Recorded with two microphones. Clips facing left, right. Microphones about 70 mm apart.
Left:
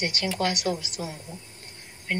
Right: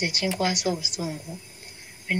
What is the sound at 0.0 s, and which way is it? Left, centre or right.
Speech, centre.